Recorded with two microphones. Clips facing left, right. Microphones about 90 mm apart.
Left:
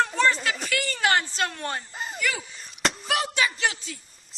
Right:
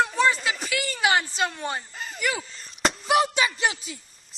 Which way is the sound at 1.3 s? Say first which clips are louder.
Right 1 dB; centre (ahead or behind).